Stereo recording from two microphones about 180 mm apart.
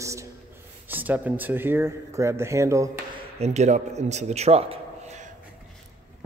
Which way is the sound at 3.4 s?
40° right (ahead or behind).